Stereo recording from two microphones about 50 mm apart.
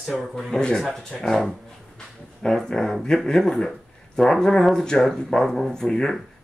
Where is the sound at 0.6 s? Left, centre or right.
Centre.